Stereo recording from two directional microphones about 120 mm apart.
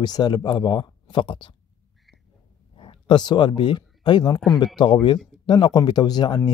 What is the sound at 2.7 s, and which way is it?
Speech, 45° left (ahead or behind).